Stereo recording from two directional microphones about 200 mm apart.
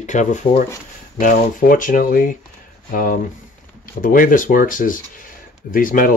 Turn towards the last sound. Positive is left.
turn(degrees=45)  # may be behind; listen again after turning